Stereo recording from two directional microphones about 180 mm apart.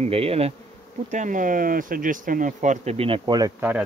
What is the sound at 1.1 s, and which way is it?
Speech, 45° right (ahead or behind).